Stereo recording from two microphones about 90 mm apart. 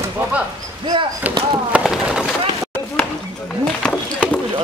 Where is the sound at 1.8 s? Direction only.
5° right (ahead or behind).